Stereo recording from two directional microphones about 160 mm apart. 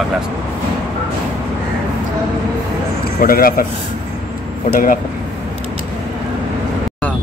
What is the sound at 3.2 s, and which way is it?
Speech, 65° left (ahead or behind).